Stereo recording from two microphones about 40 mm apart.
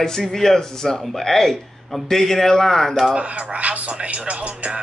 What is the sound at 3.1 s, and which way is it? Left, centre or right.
Speech, right.